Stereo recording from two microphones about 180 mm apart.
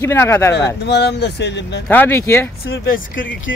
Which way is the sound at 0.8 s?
65° left (ahead or behind).